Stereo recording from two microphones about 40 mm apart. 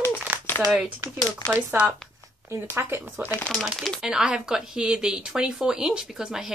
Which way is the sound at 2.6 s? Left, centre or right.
Right.